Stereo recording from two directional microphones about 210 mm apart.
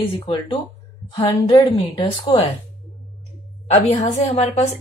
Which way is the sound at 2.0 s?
25° left (ahead or behind).